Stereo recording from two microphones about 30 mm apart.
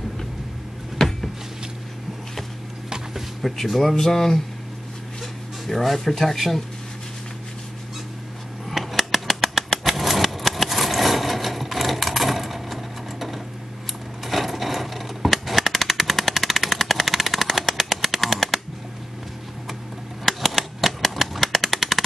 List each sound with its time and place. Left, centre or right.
1.0 s cupboard open or close: centre
3.4 s speech: centre
4.0 s speech: centre
5.7 s speech: centre
8.8 s a sound: centre
9.1 s engine: centre
14.2 s a sound: centre
15.6 s machine gun: centre
20.2 s typewriter: centre
21.5 s machine gun: centre